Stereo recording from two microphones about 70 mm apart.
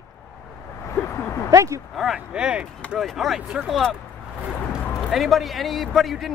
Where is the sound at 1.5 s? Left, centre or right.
Right.